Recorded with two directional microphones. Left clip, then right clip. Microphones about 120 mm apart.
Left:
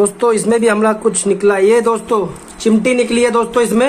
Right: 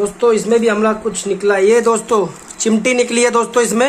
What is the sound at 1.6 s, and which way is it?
A man's voice, centre (ahead or behind).